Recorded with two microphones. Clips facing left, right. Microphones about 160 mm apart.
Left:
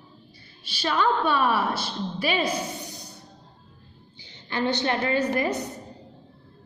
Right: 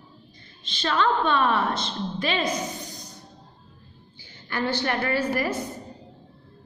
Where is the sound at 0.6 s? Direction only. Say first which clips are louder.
Even; 10° left (ahead or behind).